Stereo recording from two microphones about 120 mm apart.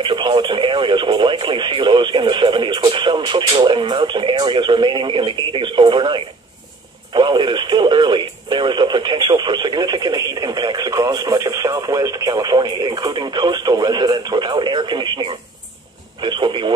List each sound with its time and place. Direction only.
0.0 s speech: 45° right (ahead or behind)